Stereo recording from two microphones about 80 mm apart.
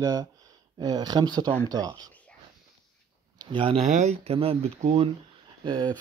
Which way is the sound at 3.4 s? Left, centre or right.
Right.